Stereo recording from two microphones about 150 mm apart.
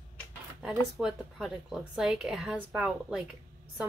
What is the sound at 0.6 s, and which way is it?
Speech, 5° right (ahead or behind).